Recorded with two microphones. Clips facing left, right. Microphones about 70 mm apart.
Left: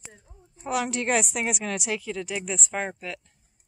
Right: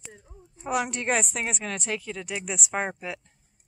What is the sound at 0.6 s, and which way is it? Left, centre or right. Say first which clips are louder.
A woman's voice: even; centre.